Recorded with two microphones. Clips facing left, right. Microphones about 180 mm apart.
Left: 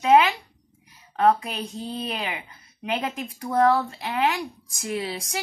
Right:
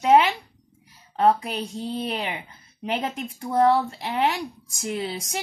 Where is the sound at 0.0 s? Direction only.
25° right (ahead or behind).